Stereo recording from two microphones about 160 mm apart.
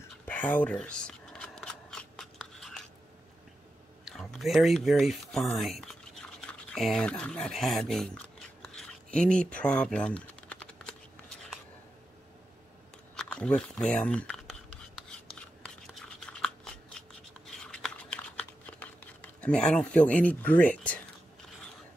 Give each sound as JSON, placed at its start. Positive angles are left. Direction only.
{"t": 0.2, "sound": "shuffling cards", "side_deg": 10}
{"t": 4.0, "sound": "speech", "side_deg": 0}
{"t": 8.6, "sound": "typing", "side_deg": 5}
{"t": 13.1, "sound": "a sound", "side_deg": 5}
{"t": 14.0, "sound": "writing", "side_deg": 5}
{"t": 17.5, "sound": "a sound", "side_deg": 5}